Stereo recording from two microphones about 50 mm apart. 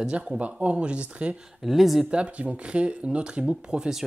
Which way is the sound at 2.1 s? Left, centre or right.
Right.